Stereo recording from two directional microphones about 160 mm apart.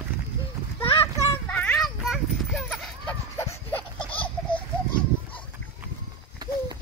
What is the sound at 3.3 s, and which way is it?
Laughter, 15° left (ahead or behind).